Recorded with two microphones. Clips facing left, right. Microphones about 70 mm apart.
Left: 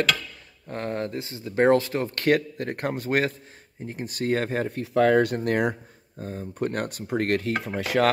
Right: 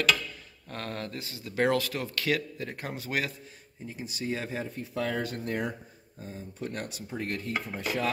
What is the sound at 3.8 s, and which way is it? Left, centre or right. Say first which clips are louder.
Stir: left 7 dB; left.